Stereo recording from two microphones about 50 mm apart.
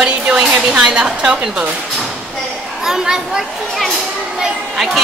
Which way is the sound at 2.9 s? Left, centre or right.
Centre.